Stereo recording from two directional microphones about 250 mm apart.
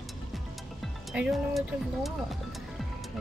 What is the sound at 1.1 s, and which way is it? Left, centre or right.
Speech, centre.